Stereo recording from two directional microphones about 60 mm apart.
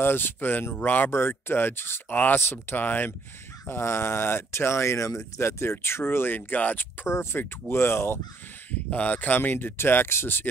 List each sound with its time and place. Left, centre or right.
0.0 s speech: left
3.6 s speech: left
7.1 s speech: left
8.9 s speech: left